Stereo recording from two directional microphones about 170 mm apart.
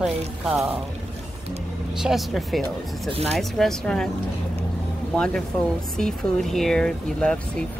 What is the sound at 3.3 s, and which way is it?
Speech, centre (ahead or behind).